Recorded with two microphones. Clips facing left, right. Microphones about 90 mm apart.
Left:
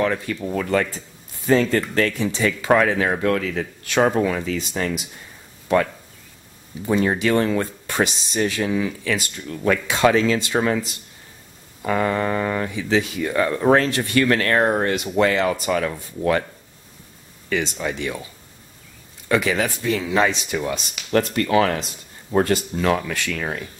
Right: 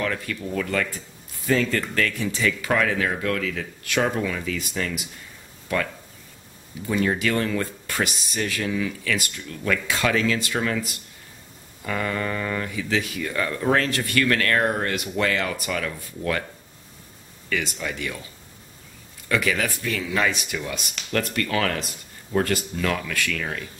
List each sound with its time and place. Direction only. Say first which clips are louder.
0.0 s speech: left 5 dB; 25° left (ahead or behind)
6.9 s speech: left 4 dB; 30° left (ahead or behind)
17.5 s speech: left 4 dB; 25° left (ahead or behind)
19.2 s speech: left 4 dB; 25° left (ahead or behind)